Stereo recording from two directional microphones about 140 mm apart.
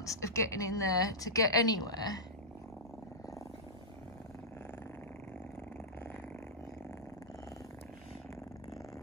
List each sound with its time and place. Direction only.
0.0 s a woman's voice: 20° left (ahead or behind)